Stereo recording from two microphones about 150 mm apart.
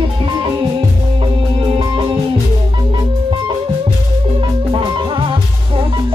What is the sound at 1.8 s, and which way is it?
Music, 35° right (ahead or behind).